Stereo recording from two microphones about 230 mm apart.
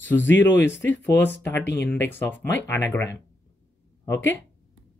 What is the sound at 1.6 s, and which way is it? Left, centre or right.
Speech, left.